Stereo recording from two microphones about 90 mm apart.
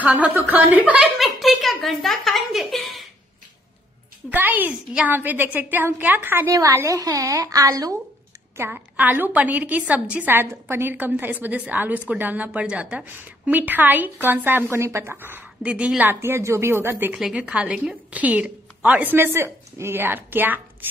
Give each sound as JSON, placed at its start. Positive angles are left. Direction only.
{"t": 0.0, "sound": "a woman's voice", "side_deg": -15}
{"t": 1.1, "sound": "speech", "side_deg": 0}
{"t": 4.3, "sound": "a woman's voice", "side_deg": -20}
{"t": 6.5, "sound": "a woman's voice", "side_deg": -35}
{"t": 8.5, "sound": "a woman's voice", "side_deg": -20}
{"t": 15.6, "sound": "a woman's voice", "side_deg": -10}
{"t": 16.1, "sound": "a woman's voice", "side_deg": -30}
{"t": 17.1, "sound": "a woman's voice", "side_deg": -10}